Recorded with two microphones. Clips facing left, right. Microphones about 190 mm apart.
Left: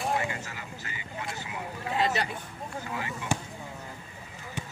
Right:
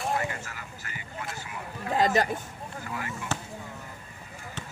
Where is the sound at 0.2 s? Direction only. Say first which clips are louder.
Even; 20° left (ahead or behind).